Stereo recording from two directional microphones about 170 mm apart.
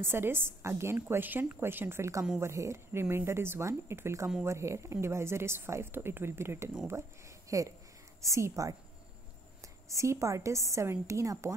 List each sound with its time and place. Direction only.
0.0 s a woman's voice: 15° right (ahead or behind)
2.5 s a woman's voice: 15° right (ahead or behind)
9.8 s a woman's voice: 15° right (ahead or behind)